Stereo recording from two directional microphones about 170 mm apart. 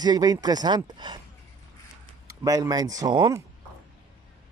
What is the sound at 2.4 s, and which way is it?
Speech, 20° right (ahead or behind).